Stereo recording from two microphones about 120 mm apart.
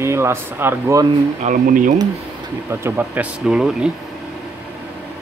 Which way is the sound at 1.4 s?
90° right.